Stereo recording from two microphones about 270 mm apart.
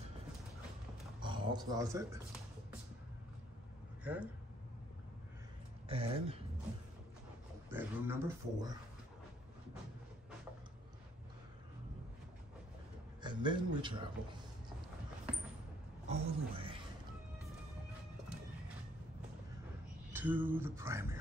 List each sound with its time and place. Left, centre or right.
1.2 s speech: centre
4.0 s speech: centre
5.9 s speech: right
7.7 s speech: centre
13.2 s a man's voice: centre
16.1 s speech: centre
20.1 s a sound: centre